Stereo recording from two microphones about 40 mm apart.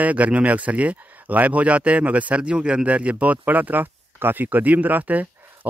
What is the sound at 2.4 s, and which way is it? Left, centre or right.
Speech, right.